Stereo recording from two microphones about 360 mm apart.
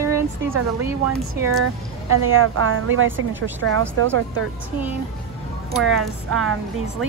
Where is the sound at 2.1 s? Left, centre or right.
Right.